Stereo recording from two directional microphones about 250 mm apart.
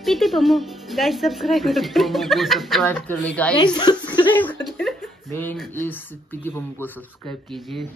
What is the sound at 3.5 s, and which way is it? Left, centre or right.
Speech, centre.